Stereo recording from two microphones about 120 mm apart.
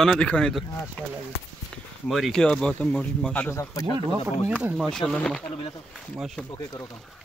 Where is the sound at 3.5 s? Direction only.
25° left (ahead or behind).